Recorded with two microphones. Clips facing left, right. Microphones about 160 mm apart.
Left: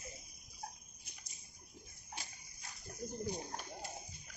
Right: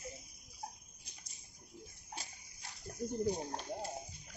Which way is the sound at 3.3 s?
35° right (ahead or behind).